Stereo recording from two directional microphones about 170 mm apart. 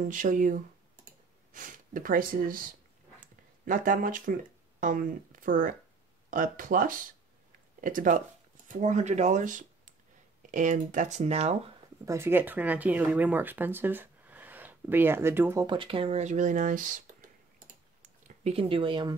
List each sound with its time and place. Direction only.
0.1 s speech: 50° right (ahead or behind)
12.0 s speech: 15° right (ahead or behind)
15.6 s speech: 30° right (ahead or behind); by 17.3 s 50° right (ahead or behind)
18.2 s speech: 40° right (ahead or behind)